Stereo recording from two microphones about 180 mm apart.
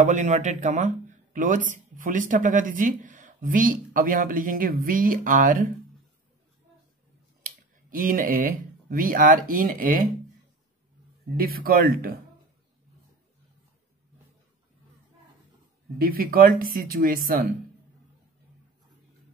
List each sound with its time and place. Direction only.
0.0 s speech: 40° right (ahead or behind)
7.4 s speech: 50° right (ahead or behind)
11.3 s speech: 55° right (ahead or behind)
16.0 s speech: 55° right (ahead or behind)